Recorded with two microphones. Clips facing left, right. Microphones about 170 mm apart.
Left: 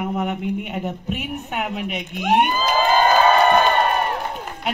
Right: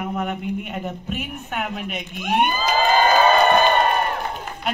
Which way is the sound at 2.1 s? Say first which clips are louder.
Left 3 dB; 75° left (ahead or behind).